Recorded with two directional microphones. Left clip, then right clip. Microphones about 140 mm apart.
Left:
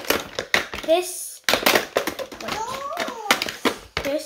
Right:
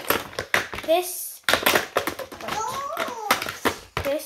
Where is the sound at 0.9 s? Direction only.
30° left (ahead or behind).